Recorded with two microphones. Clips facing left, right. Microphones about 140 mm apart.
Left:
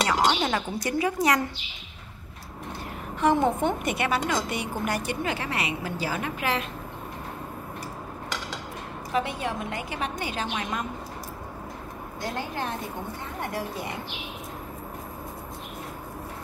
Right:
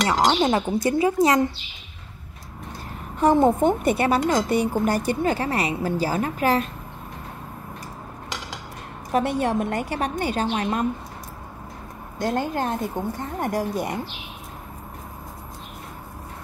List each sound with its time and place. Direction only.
0.4 s a woman's voice: 25° right (ahead or behind)
3.2 s speech: 40° right (ahead or behind)
9.1 s a woman's voice: 45° right (ahead or behind)
12.2 s a woman's voice: 45° right (ahead or behind)